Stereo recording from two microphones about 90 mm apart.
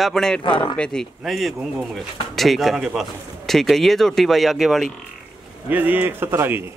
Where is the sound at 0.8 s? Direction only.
5° left (ahead or behind).